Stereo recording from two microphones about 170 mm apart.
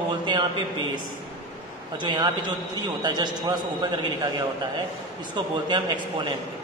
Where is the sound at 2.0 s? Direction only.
25° right (ahead or behind).